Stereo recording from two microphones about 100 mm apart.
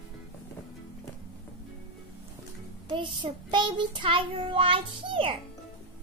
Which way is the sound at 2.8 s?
55° right (ahead or behind).